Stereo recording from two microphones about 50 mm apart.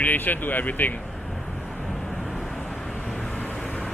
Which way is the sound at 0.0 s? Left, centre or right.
Left.